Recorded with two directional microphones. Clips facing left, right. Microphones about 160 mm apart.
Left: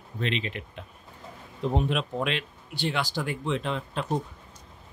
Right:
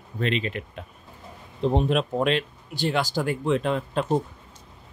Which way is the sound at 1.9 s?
40° right (ahead or behind).